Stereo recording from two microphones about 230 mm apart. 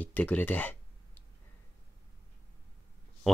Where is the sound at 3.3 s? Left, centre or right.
Centre.